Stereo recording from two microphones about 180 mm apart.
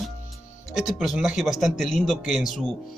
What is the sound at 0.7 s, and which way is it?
Speech, centre (ahead or behind).